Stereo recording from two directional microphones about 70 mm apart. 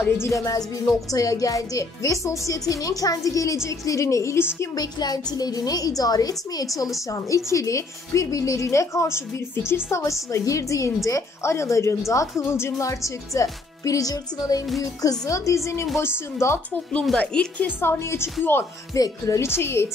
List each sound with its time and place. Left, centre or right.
0.2 s a woman's voice: left
4.7 s a woman's voice: left
12.4 s a woman's voice: left
17.2 s speech: centre
17.6 s a woman's voice: left
18.9 s a woman's voice: left
19.4 s a woman's voice: left